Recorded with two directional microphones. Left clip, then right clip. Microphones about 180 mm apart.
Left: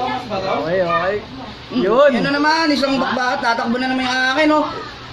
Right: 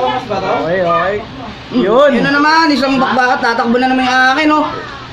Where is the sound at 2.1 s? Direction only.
10° right (ahead or behind).